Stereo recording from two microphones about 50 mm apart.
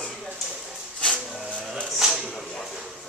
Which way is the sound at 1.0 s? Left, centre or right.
Centre.